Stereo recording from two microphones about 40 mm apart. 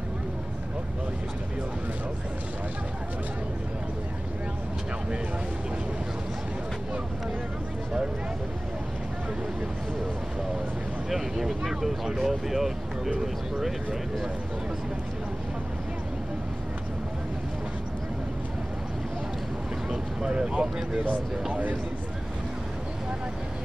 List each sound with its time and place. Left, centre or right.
11.1 s speech: centre
19.9 s speech: right